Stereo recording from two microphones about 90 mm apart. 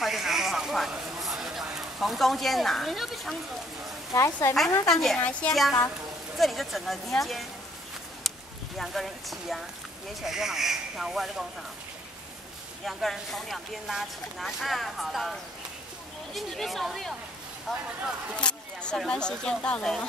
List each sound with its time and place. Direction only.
0.0 s a sound: centre (ahead or behind)
1.2 s speech: 5° right (ahead or behind)
4.1 s a woman's voice: 40° left (ahead or behind)
4.6 s speech: 5° left (ahead or behind)
8.7 s speech: centre (ahead or behind)
12.8 s speech: centre (ahead or behind)
16.3 s speech: centre (ahead or behind)